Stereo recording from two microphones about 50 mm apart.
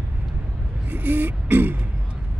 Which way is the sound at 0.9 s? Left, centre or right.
Right.